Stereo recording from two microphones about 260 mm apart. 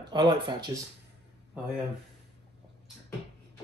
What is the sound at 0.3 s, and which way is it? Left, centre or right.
Speech, centre.